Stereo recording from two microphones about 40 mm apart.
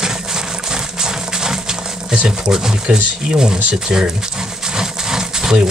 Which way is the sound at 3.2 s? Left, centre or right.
Centre.